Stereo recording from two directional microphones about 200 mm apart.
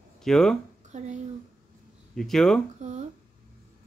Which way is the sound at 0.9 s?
35° right (ahead or behind).